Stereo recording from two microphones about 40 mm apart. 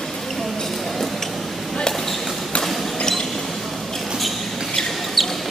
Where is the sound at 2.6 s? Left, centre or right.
Centre.